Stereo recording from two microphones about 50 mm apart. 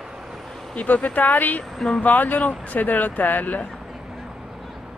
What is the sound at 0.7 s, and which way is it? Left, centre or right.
Speech, left.